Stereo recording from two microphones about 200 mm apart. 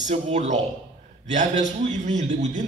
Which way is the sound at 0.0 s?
35° right (ahead or behind).